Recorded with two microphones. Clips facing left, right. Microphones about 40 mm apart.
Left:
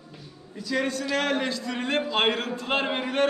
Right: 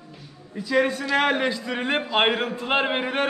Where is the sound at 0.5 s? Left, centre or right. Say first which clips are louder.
Right 5 dB; centre.